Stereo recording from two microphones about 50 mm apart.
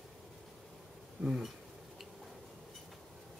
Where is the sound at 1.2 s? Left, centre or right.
Centre.